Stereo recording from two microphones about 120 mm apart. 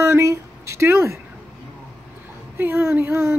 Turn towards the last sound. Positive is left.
turn(degrees=-20)  # may be behind; listen again after turning